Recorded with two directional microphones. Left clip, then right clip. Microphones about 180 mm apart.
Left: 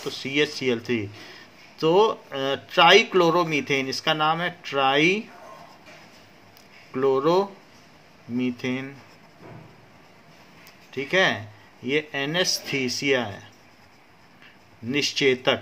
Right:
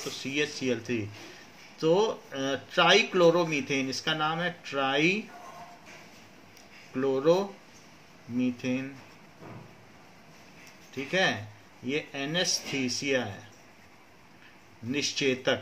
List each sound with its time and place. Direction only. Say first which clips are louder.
0.1 s speech: left 7 dB; 60° left (ahead or behind)
6.9 s speech: left 4 dB; 60° left (ahead or behind)
11.1 s speech: left 6 dB; 55° left (ahead or behind)
14.9 s speech: left 7 dB; 60° left (ahead or behind)